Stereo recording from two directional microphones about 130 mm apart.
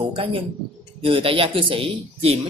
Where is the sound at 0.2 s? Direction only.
45° right (ahead or behind).